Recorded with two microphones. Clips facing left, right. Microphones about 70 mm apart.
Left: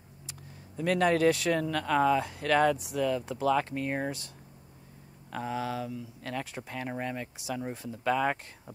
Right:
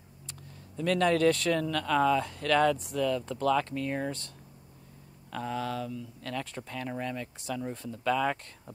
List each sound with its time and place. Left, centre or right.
0.3 s speech: centre
5.3 s speech: centre